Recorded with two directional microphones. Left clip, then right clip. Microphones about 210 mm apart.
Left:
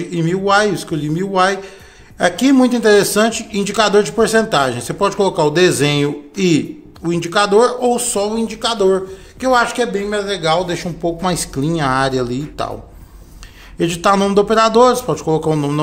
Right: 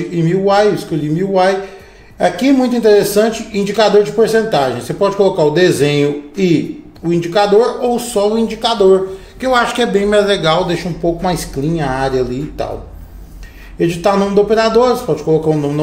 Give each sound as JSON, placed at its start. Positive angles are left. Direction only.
{"t": 0.1, "sound": "a man's voice", "side_deg": 30}
{"t": 11.1, "sound": "a man's voice", "side_deg": 30}
{"t": 13.7, "sound": "a man's voice", "side_deg": 30}